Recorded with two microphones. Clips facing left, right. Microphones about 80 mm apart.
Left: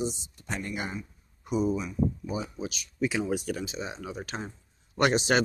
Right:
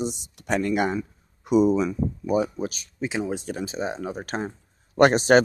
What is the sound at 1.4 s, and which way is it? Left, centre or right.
Speech, right.